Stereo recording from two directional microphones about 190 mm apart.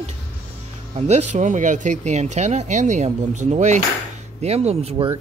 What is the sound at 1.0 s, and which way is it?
A man's voice, 35° right (ahead or behind).